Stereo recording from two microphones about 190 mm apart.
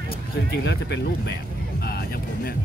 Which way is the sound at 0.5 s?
65° left (ahead or behind).